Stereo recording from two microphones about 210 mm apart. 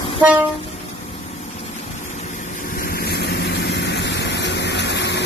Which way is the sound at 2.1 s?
35° left (ahead or behind).